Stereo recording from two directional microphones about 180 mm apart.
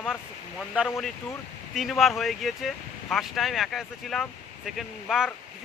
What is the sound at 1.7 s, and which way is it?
Speech, centre (ahead or behind).